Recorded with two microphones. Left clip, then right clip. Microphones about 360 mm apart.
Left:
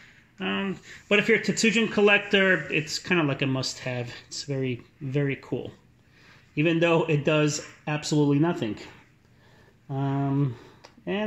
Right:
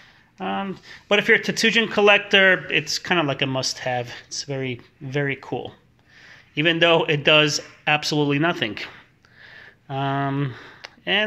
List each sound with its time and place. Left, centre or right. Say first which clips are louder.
0.0 s speech: right 3 dB; centre
5.4 s speech: right 4 dB; right
6.5 s speech: right 5 dB; centre
9.8 s speech: right 6 dB; right